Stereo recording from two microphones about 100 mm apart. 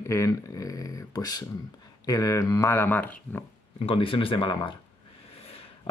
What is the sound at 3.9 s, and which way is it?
Speech, 65° left (ahead or behind).